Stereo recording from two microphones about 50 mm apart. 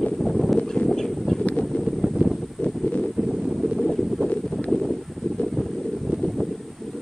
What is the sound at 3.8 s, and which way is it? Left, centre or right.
Boat, centre.